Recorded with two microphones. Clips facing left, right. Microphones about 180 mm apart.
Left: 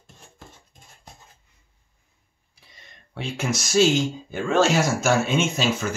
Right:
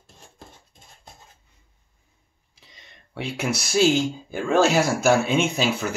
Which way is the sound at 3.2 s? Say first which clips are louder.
Right 1 dB; 10° right (ahead or behind).